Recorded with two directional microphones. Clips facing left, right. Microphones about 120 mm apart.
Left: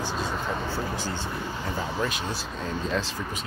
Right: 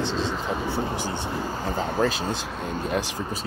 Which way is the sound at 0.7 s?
20° right (ahead or behind).